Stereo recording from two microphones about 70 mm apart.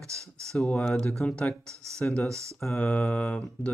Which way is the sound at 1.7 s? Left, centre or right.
Right.